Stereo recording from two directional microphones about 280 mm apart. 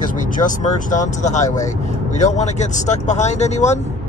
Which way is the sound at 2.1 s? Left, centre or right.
Left.